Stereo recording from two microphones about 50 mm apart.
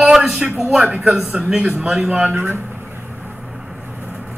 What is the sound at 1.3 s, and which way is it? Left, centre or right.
Speech, right.